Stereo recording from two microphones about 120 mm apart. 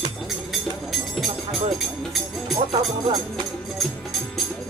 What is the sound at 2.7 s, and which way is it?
Speech, 35° right (ahead or behind).